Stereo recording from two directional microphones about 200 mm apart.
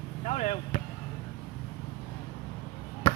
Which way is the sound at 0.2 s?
35° left (ahead or behind).